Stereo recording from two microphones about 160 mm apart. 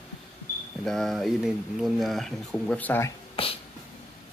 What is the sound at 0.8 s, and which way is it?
Speech, centre (ahead or behind).